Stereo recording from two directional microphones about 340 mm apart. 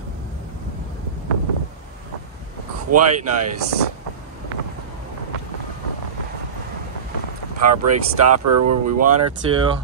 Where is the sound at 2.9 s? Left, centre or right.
Right.